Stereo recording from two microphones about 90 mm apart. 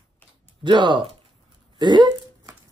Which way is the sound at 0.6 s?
60° right (ahead or behind).